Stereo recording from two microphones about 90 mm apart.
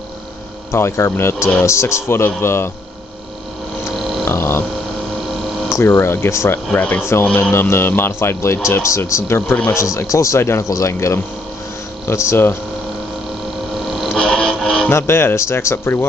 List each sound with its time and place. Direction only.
0.7 s speech: 30° left (ahead or behind)
3.9 s a sound: centre (ahead or behind)
4.3 s a sound: 30° left (ahead or behind)
5.8 s speech: 30° left (ahead or behind)
6.7 s speech: 15° left (ahead or behind)
13.9 s music: centre (ahead or behind)
14.9 s speech: 30° left (ahead or behind)